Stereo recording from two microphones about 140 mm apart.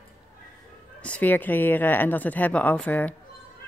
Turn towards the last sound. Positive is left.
turn(degrees=10)  # may be behind; listen again after turning